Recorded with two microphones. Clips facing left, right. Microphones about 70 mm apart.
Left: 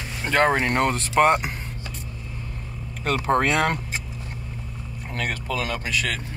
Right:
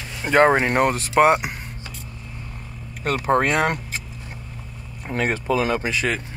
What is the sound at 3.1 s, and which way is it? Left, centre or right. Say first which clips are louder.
Speech: right 2 dB; centre.